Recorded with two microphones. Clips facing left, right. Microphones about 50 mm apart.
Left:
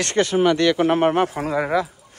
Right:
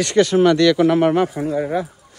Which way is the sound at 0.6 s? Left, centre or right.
Left.